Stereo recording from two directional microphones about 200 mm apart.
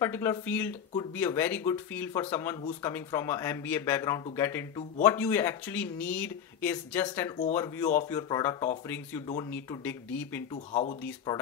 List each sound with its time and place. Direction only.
0.0 s speech: 10° left (ahead or behind)
10.7 s speech: 35° left (ahead or behind)
11.3 s speech: 15° left (ahead or behind)